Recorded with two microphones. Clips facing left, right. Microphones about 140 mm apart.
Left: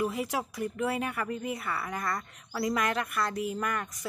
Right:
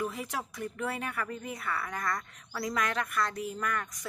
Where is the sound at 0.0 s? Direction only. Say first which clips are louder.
Left 4 dB; 10° left (ahead or behind).